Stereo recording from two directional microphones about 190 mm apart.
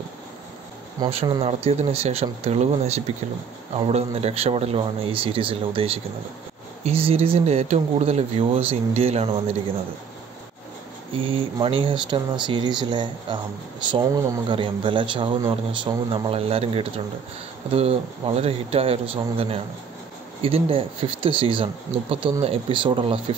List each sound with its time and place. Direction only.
1.0 s a man's voice: 25° right (ahead or behind)
11.1 s a man's voice: 30° right (ahead or behind)
14.5 s a man's voice: 25° right (ahead or behind)